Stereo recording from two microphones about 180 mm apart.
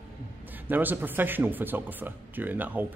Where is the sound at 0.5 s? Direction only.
10° right (ahead or behind).